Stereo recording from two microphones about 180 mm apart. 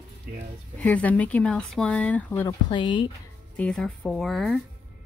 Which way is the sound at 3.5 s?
5° left (ahead or behind).